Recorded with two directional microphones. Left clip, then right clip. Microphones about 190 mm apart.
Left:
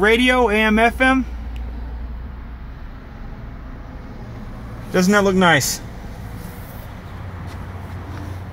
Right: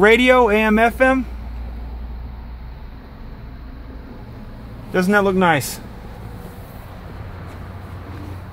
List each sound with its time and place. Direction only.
0.0 s speech: 20° right (ahead or behind)
4.9 s a man's voice: 5° left (ahead or behind)